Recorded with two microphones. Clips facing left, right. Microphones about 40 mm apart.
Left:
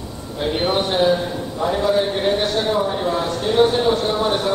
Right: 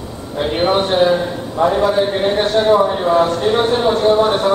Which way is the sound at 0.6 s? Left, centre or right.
Centre.